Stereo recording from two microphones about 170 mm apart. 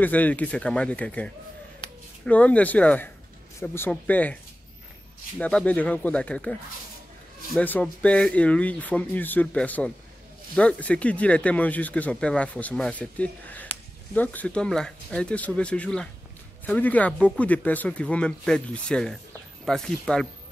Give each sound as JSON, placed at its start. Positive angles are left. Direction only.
{"t": 0.0, "sound": "speech", "side_deg": 10}
{"t": 1.8, "sound": "a sound", "side_deg": 25}
{"t": 2.2, "sound": "speech", "side_deg": 10}
{"t": 5.4, "sound": "speech", "side_deg": 5}
{"t": 7.5, "sound": "speech", "side_deg": 5}